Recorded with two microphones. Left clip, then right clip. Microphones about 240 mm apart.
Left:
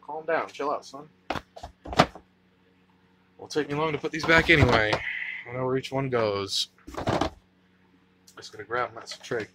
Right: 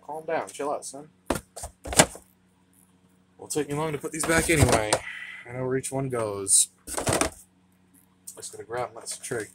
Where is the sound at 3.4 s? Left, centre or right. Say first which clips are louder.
Left 1 dB; centre.